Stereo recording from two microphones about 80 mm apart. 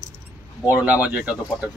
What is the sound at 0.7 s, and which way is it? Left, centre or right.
Speech, centre.